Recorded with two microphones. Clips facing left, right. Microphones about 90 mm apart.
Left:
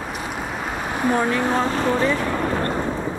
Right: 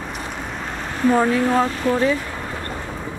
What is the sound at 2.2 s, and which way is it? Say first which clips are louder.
Vehicle: left 7 dB; 65° left (ahead or behind).